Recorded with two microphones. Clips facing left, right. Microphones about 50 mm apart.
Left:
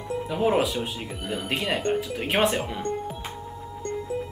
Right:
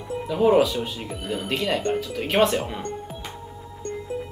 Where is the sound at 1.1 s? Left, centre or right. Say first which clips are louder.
Right 2 dB; centre.